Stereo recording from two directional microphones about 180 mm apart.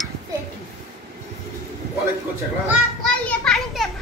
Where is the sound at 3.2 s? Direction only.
Centre (ahead or behind).